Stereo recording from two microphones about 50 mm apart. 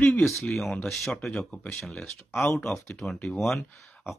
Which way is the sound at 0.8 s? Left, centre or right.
Centre.